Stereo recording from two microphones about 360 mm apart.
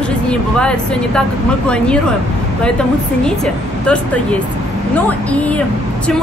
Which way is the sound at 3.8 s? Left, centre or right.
Centre.